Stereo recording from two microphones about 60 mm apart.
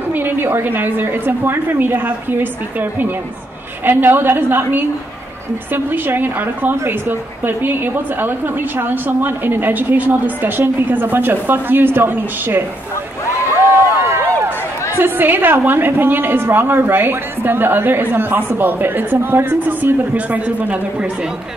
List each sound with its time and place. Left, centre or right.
0.1 s a woman's voice: right
13.5 s a sound: right
15.0 s a woman's voice: right